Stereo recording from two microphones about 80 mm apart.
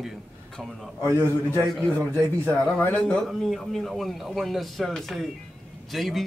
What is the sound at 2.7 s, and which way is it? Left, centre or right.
Speech, centre.